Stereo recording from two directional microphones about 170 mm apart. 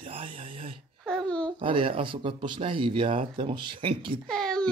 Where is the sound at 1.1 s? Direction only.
5° left (ahead or behind).